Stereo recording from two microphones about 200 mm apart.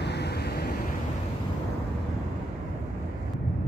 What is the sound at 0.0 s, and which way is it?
Vehicle, 55° left (ahead or behind).